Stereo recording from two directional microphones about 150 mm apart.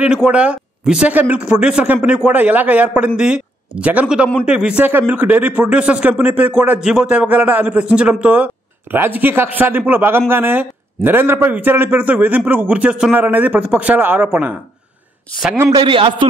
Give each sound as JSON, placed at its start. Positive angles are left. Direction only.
{"t": 0.0, "sound": "a man's voice", "side_deg": -5}
{"t": 15.7, "sound": "a man's voice", "side_deg": -35}